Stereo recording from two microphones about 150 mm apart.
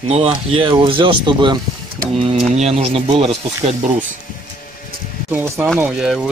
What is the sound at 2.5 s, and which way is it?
Speech, 45° right (ahead or behind).